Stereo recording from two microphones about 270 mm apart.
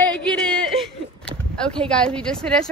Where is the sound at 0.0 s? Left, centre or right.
Centre.